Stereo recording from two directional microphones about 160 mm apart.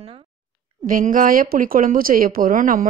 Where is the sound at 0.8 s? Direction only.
60° right (ahead or behind).